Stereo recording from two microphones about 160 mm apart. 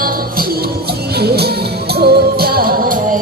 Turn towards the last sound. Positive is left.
turn(degrees=-65)  # may be behind; listen again after turning